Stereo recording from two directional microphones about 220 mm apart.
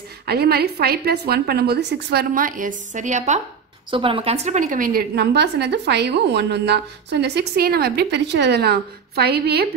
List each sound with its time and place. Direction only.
0.3 s a woman's voice: 45° right (ahead or behind)